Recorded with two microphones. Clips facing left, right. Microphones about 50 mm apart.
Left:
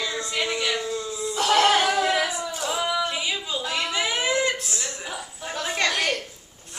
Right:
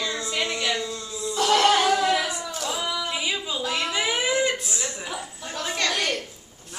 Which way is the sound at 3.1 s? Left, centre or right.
Centre.